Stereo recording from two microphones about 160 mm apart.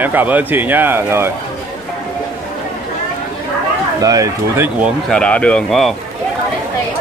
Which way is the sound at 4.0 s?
20° right (ahead or behind).